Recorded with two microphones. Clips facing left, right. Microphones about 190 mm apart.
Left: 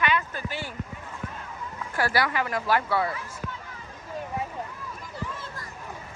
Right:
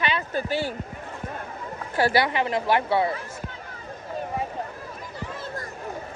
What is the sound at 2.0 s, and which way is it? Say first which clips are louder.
Speech: right 4 dB; 25° right (ahead or behind).